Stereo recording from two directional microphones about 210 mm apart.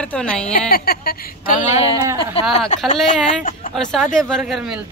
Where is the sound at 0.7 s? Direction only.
45° left (ahead or behind).